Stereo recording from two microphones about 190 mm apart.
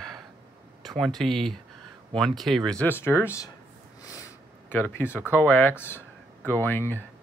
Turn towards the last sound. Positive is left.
turn(degrees=10)  # may be behind; listen again after turning